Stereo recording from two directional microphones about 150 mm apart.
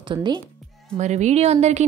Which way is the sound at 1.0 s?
50° right (ahead or behind).